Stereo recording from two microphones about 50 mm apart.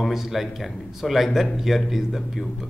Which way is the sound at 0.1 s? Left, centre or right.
Centre.